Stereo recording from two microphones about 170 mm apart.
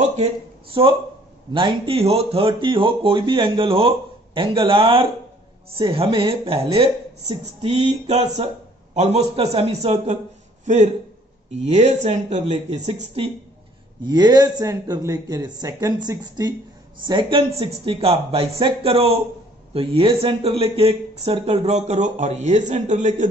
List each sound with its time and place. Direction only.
0.1 s a man's voice: 35° right (ahead or behind)
14.0 s speech: 25° right (ahead or behind); by 23.2 s 45° right (ahead or behind)